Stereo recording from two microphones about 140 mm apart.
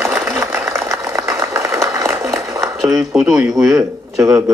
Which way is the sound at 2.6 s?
Centre (ahead or behind).